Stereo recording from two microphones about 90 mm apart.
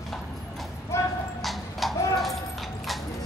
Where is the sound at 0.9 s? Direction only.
30° left (ahead or behind).